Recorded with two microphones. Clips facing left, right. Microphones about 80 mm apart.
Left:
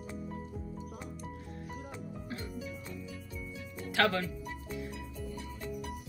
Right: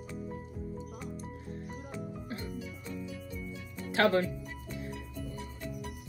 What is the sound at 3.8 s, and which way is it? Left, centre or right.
Speech, right.